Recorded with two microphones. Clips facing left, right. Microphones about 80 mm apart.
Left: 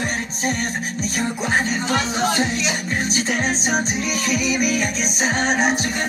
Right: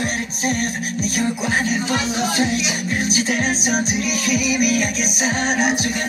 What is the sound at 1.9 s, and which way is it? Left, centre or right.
Speech, centre.